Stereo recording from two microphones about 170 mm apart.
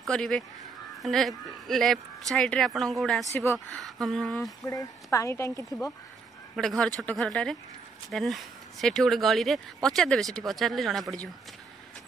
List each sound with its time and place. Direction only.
0.1 s speech: 5° left (ahead or behind)
4.6 s a woman's voice: 20° left (ahead or behind)
6.5 s speech: centre (ahead or behind)